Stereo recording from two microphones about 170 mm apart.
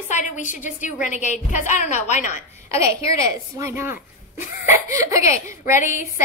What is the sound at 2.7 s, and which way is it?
A woman's voice, 20° right (ahead or behind).